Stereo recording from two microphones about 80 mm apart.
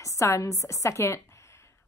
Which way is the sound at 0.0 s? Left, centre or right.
Left.